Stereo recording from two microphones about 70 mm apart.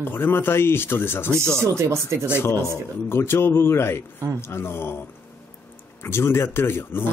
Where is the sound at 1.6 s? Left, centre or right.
Right.